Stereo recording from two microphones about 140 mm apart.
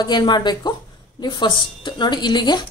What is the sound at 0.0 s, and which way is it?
A woman's voice, 30° left (ahead or behind).